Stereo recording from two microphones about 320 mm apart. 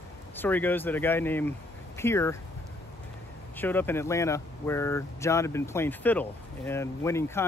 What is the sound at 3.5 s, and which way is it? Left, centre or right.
Speech, centre.